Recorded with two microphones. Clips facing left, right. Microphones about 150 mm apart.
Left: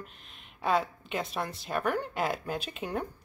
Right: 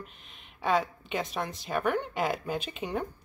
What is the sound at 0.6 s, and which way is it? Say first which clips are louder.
Speech: right 1 dB; 5° left (ahead or behind).